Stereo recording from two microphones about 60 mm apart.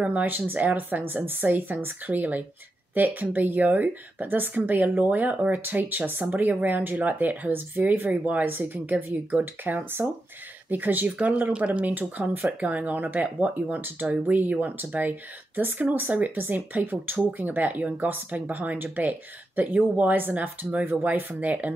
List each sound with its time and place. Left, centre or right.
0.0 s speech: right